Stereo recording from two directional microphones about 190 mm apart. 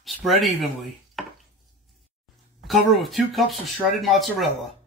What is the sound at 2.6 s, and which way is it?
Speech, centre (ahead or behind).